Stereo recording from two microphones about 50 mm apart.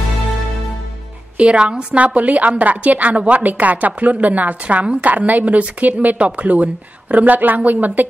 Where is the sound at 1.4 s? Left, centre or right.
Right.